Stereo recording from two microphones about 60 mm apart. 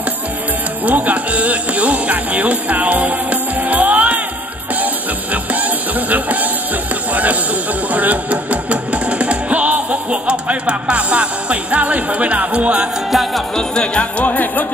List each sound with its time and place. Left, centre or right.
0.8 s music: right
5.3 s music: right
7.9 s speech: right
13.1 s music: centre
13.6 s music: centre
14.2 s music: left